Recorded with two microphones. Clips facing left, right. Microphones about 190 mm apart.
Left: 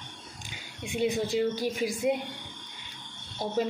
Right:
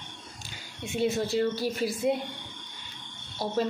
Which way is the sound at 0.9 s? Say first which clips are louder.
Even; 15° left (ahead or behind).